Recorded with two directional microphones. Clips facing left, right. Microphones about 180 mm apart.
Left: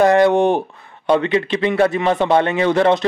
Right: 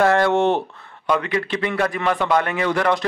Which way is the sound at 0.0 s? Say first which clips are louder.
Left 4 dB; 15° left (ahead or behind).